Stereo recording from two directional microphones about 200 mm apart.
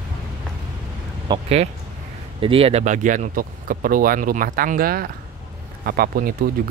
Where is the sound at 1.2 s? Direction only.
25° right (ahead or behind).